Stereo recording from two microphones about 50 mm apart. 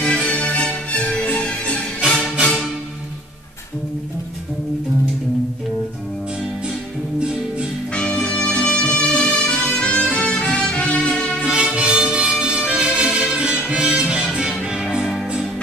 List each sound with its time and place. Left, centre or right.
0.0 s music: left
2.0 s music: centre
7.2 s music: right
7.9 s music: left
11.4 s music: right